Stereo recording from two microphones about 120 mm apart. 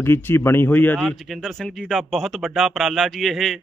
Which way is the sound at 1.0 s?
Centre (ahead or behind).